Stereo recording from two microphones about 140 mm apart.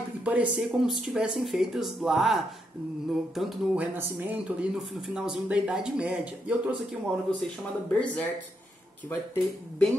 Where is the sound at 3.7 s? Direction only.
15° right (ahead or behind).